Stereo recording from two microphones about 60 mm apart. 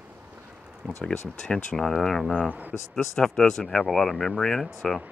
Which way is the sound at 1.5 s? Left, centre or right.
Centre.